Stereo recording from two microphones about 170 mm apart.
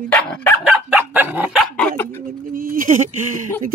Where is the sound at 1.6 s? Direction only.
5° left (ahead or behind).